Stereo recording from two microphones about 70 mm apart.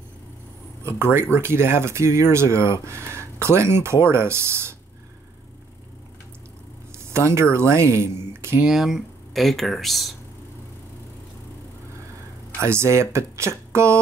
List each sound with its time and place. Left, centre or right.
0.8 s speech: right
6.9 s a sound: right
7.5 s speech: right
8.6 s speech: centre
12.6 s speech: right